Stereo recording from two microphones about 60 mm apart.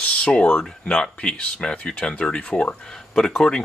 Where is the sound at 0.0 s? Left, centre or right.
Centre.